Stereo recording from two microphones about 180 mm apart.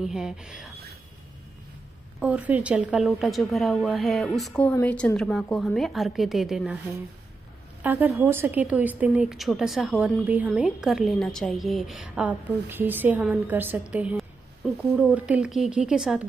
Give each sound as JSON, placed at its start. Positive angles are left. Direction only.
{"t": 0.0, "sound": "a woman's voice", "side_deg": -5}
{"t": 2.1, "sound": "a woman's voice", "side_deg": -5}
{"t": 7.8, "sound": "a woman's voice", "side_deg": -10}